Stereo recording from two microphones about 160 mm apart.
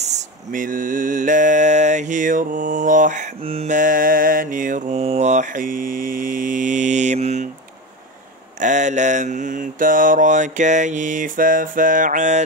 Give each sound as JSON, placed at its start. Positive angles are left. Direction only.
{"t": 0.0, "sound": "mantra", "side_deg": -50}
{"t": 3.4, "sound": "mantra", "side_deg": -40}
{"t": 3.7, "sound": "mantra", "side_deg": -55}
{"t": 8.5, "sound": "mantra", "side_deg": -50}